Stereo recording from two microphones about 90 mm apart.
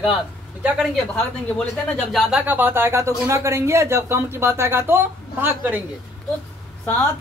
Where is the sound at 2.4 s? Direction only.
20° right (ahead or behind).